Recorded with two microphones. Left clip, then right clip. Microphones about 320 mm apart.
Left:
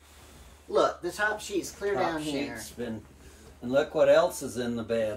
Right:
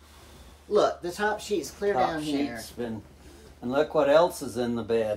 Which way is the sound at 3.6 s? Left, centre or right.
Centre.